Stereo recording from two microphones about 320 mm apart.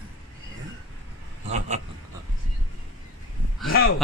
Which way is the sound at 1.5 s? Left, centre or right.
Right.